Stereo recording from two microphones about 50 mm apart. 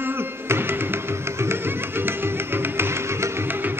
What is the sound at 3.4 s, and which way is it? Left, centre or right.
Music, right.